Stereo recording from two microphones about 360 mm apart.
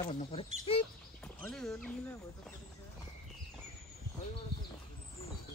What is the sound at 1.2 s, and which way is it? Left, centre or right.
Speech, centre.